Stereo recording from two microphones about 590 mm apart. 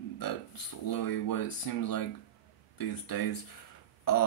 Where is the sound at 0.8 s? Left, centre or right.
Left.